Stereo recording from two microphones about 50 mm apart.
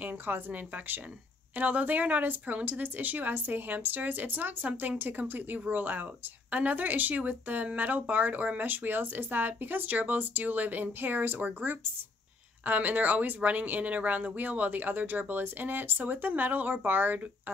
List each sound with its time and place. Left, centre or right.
0.0 s speech: right